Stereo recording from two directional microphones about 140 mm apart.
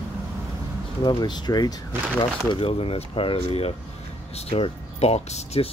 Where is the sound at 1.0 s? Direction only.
30° left (ahead or behind); by 5.7 s 50° left (ahead or behind).